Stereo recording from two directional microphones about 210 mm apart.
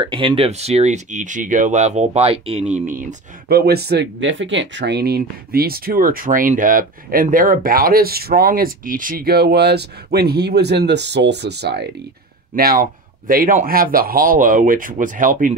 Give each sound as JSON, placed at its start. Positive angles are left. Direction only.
{"t": 0.0, "sound": "speech", "side_deg": -20}
{"t": 2.7, "sound": "speech", "side_deg": -35}